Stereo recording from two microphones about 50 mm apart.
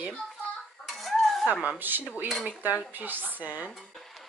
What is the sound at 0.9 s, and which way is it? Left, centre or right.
Dishes, centre.